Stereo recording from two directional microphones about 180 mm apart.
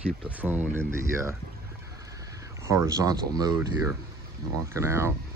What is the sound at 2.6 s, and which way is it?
Speech, 15° right (ahead or behind).